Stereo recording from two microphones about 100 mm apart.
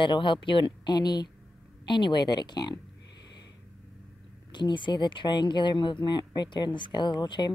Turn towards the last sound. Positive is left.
turn(degrees=50)  # may be behind; listen again after turning